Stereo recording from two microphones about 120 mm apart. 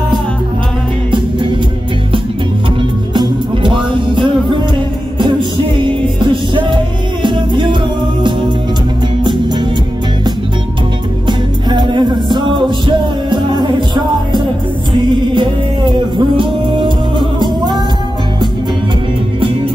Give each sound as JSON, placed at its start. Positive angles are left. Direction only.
{"t": 3.2, "sound": "music", "side_deg": -40}
{"t": 5.8, "sound": "music", "side_deg": -40}
{"t": 11.2, "sound": "music", "side_deg": -40}